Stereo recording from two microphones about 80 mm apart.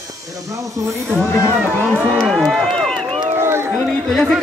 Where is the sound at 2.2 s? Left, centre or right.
Centre.